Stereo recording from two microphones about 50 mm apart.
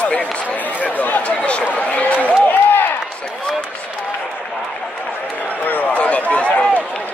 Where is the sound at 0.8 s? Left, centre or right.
Left.